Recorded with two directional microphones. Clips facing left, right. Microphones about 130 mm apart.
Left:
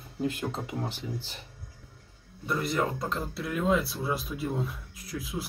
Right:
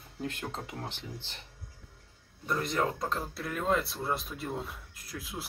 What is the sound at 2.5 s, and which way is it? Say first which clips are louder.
Speech: left 2 dB; 5° left (ahead or behind).